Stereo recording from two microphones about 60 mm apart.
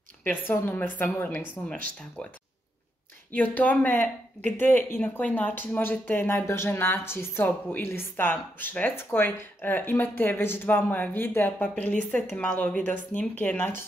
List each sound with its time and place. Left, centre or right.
0.7 s speech: left
3.3 s speech: left
6.4 s speech: left
11.7 s speech: centre
12.6 s speech: left